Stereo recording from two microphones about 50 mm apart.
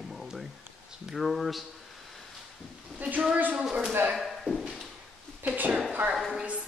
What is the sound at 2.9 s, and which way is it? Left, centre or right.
Speech, right.